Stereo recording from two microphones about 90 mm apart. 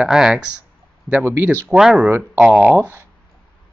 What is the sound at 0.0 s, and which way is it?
Speech, 5° right (ahead or behind).